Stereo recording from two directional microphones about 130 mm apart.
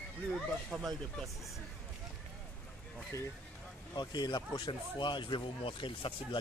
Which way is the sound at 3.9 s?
35° left (ahead or behind).